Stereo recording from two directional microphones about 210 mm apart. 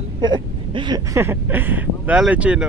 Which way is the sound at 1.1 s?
10° right (ahead or behind).